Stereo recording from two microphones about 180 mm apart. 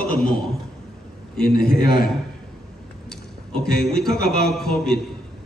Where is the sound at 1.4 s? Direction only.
55° left (ahead or behind).